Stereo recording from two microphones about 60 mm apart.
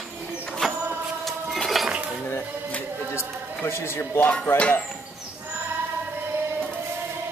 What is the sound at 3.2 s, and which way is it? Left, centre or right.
A man's voice, left.